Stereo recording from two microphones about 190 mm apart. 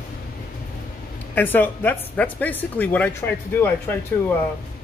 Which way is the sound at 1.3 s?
10° left (ahead or behind).